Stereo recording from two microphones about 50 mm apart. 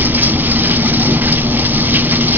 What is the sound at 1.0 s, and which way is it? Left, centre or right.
Vehicle, right.